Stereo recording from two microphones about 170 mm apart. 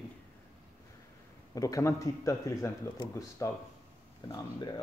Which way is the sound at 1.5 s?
20° left (ahead or behind).